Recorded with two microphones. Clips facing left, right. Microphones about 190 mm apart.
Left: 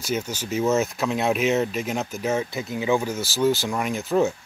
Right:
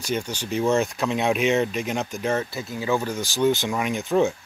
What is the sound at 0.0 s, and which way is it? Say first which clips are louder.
Speech: even; 5° left (ahead or behind).